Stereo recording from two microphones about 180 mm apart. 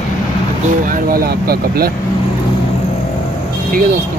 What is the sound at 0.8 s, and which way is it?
Speech, 50° right (ahead or behind).